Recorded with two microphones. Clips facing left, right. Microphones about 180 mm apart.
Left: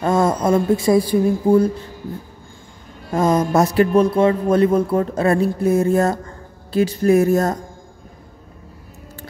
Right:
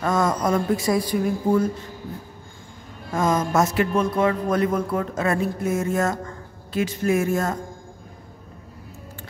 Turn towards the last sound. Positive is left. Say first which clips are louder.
# left 7 dB
turn(degrees=40)  # may be behind; listen again after turning